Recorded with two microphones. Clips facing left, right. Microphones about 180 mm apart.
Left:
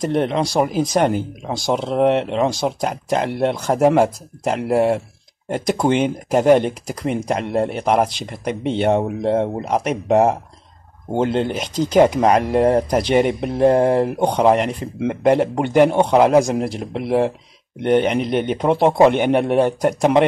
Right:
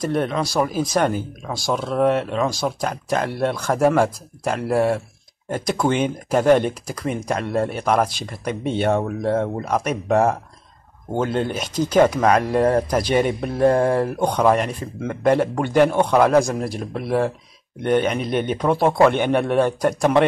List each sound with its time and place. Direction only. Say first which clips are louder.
0.1 s a man's voice: left 4 dB; 25° left (ahead or behind)
11.8 s a man's voice: left 2 dB; 15° left (ahead or behind)